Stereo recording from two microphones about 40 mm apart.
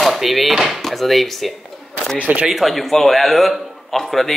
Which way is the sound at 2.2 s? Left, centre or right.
Right.